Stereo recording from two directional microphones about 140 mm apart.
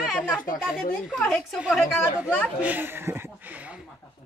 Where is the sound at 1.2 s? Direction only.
5° left (ahead or behind).